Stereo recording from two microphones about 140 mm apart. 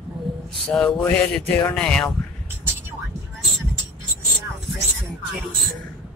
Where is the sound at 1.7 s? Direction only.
5° left (ahead or behind).